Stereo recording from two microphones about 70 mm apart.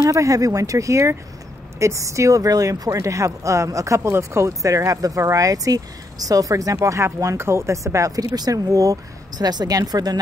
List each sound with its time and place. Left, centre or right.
0.0 s speech: right
9.4 s speech: right